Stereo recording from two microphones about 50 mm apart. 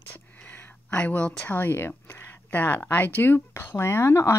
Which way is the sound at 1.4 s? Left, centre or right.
Left.